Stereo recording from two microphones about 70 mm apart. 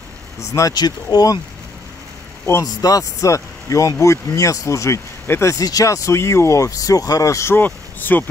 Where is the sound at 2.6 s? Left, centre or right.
Left.